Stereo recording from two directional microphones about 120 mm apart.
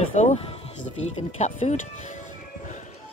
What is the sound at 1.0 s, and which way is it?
Speech, 70° left (ahead or behind).